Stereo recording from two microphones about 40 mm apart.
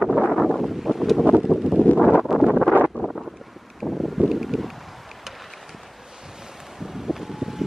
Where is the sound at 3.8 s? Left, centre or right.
Centre.